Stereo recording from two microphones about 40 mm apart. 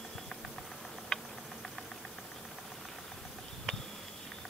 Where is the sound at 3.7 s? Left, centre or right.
Centre.